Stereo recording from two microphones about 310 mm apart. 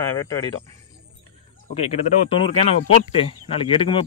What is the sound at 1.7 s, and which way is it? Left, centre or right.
Speech, centre.